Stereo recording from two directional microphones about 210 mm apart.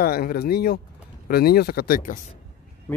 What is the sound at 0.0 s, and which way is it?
Speech, 45° left (ahead or behind).